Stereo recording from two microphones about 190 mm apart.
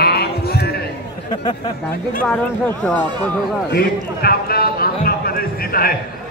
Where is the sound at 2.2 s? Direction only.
5° left (ahead or behind).